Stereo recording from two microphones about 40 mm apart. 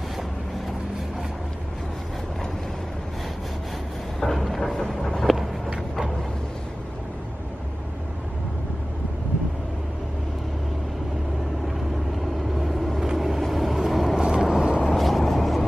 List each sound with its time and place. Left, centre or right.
4.2 s vehicle: centre
12.5 s vehicle: centre
14.1 s vehicle: centre
15.0 s vehicle: centre